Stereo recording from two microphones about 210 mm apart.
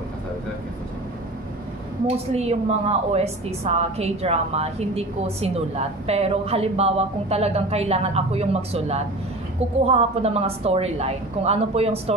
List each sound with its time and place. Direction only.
2.0 s a woman's voice: 30° right (ahead or behind)